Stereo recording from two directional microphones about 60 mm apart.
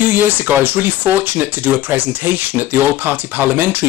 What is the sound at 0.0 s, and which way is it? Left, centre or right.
Speech, right.